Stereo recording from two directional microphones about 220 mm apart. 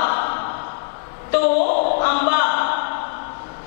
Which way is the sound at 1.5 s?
40° left (ahead or behind).